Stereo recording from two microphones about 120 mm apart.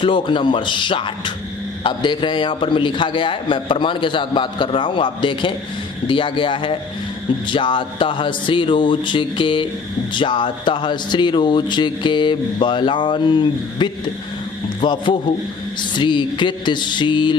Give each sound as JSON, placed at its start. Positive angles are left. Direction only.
{"t": 0.0, "sound": "a man's voice", "side_deg": 45}